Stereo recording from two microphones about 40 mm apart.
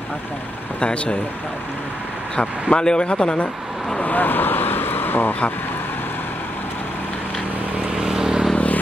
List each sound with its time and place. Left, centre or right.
0.7 s speech: left
2.7 s speech: left
4.0 s vehicle: left
8.0 s vehicle: centre